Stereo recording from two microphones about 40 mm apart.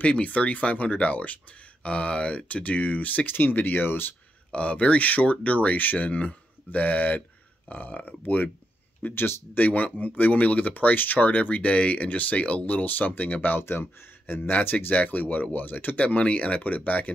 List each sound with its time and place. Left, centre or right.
0.0 s speech: left
3.5 s speech: left
4.5 s speech: left
9.1 s speech: left
9.6 s speech: left
13.6 s speech: left
16.0 s speech: left